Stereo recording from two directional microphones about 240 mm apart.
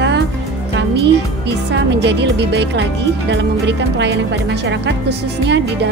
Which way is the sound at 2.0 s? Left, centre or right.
Right.